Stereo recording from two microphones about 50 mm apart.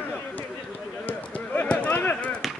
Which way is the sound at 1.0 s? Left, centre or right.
Left.